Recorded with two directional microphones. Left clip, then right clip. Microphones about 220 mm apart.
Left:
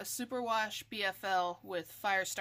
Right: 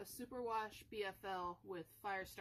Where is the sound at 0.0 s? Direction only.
50° left (ahead or behind).